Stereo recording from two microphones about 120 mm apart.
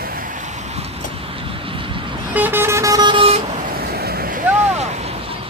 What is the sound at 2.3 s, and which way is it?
Vehicle, 15° right (ahead or behind).